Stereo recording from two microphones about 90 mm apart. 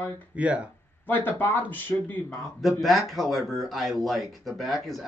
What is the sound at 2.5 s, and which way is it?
Speech, centre (ahead or behind).